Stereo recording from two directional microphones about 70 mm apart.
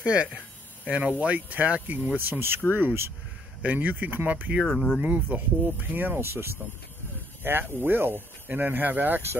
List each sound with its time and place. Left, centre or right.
0.0 s speech: centre
5.9 s speech: right